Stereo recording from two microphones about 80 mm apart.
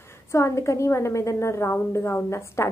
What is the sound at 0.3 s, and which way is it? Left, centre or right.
Speech, left.